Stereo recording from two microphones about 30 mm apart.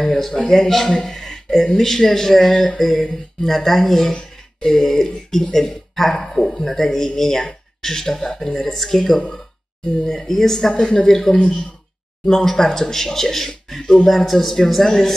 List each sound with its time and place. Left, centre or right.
0.0 s a man's voice: centre
14.0 s a man's voice: centre